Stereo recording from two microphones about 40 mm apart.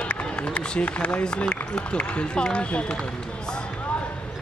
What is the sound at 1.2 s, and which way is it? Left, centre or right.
Speech, left.